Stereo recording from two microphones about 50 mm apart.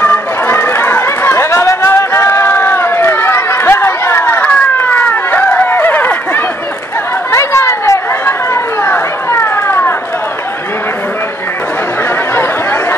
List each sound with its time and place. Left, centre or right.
0.0 s run: left
5.7 s a sound: left
7.3 s chatter: left
8.8 s children playing: left